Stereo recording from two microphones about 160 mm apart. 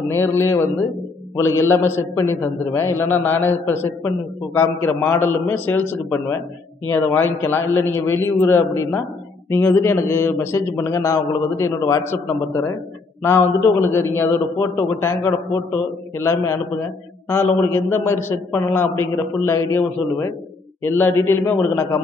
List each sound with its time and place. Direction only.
0.1 s a man's voice: 15° left (ahead or behind)